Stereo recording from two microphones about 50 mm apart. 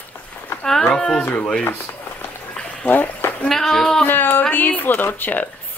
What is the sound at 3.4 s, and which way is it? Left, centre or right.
Speech, centre.